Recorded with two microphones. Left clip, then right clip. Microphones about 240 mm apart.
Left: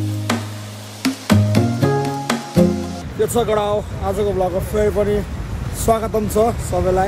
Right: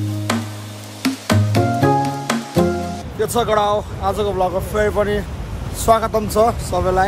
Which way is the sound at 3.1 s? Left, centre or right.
Centre.